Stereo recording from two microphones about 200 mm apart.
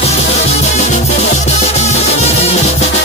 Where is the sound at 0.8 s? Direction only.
35° left (ahead or behind).